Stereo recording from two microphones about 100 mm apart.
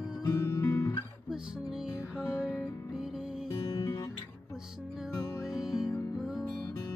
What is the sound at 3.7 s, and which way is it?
Music, 35° left (ahead or behind).